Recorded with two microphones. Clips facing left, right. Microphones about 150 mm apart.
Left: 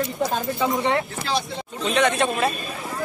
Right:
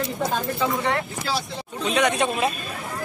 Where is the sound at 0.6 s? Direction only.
20° left (ahead or behind).